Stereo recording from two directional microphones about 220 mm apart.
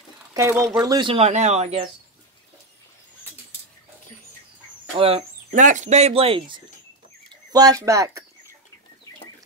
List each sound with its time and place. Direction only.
0.3 s speech: 15° right (ahead or behind); by 1.9 s 30° right (ahead or behind)
4.9 s speech: 25° right (ahead or behind)